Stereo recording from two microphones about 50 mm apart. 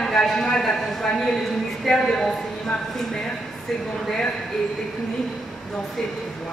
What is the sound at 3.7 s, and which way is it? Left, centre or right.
Speech, centre.